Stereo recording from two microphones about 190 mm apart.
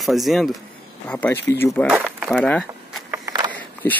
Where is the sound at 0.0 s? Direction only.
Centre (ahead or behind).